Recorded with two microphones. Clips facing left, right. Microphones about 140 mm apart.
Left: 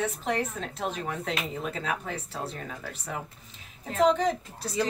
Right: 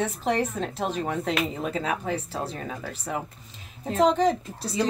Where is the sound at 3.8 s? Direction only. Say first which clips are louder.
Right 2 dB; 35° right (ahead or behind).